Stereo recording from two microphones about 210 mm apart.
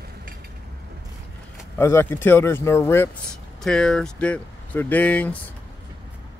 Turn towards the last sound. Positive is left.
turn(degrees=5)  # may be behind; listen again after turning